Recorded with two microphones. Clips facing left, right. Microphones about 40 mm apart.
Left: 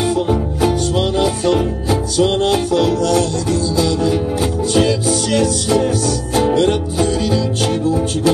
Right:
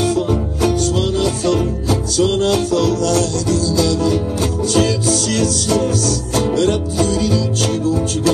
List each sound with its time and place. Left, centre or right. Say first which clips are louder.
0.0 s music: left 1 dB; centre
0.9 s music: left 1 dB; left